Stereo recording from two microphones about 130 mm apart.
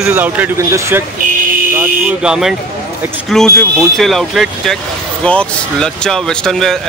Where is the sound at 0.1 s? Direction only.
15° right (ahead or behind).